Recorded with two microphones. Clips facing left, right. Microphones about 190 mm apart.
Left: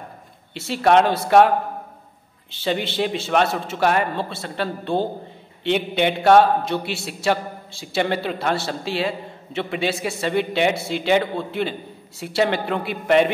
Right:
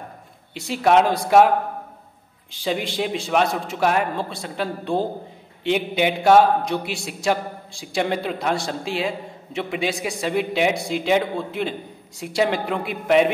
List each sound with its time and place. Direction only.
0.6 s a man's voice: centre (ahead or behind)
3.0 s a man's voice: centre (ahead or behind)